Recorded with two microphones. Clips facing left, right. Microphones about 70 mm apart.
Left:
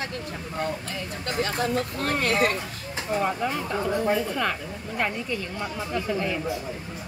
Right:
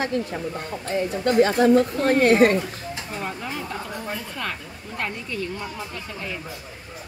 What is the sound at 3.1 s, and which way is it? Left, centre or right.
Speech, centre.